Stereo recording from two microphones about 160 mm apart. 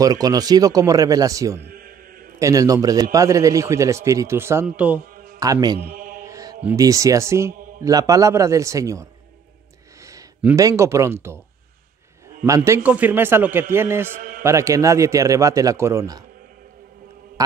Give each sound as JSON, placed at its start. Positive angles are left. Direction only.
{"t": 0.0, "sound": "a man's voice", "side_deg": -25}
{"t": 1.7, "sound": "chant", "side_deg": -65}
{"t": 2.3, "sound": "a man's voice", "side_deg": -20}
{"t": 5.4, "sound": "a man's voice", "side_deg": -25}
{"t": 5.9, "sound": "mantra", "side_deg": -60}
{"t": 6.2, "sound": "mantra", "side_deg": -20}
{"t": 6.8, "sound": "a man's voice", "side_deg": -20}
{"t": 10.4, "sound": "a man's voice", "side_deg": -20}
{"t": 12.4, "sound": "a man's voice", "side_deg": -20}
{"t": 14.1, "sound": "a sound", "side_deg": -60}
{"t": 14.4, "sound": "a man's voice", "side_deg": -20}